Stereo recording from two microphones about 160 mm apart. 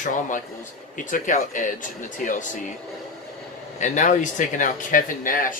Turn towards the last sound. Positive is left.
turn(degrees=60)  # may be behind; listen again after turning